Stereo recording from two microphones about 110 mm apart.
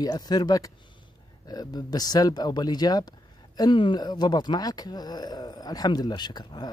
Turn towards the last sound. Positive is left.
turn(degrees=40)  # may be behind; listen again after turning